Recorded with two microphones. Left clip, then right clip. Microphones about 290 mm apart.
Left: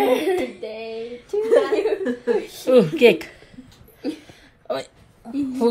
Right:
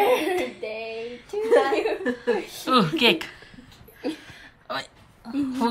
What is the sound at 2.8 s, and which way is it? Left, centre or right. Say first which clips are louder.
Speech: left 8 dB; right.